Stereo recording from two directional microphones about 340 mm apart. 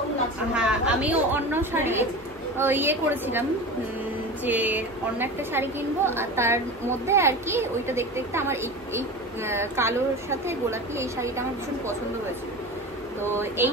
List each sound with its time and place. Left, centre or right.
0.6 s a woman's voice: centre
4.5 s speech: centre
13.6 s speech: centre